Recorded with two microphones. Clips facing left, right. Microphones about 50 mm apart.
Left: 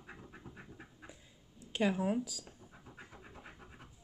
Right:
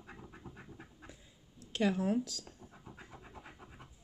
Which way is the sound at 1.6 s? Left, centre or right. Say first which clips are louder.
Even; centre.